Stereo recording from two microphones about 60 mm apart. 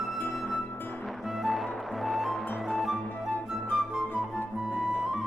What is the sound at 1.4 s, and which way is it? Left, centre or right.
Music, centre.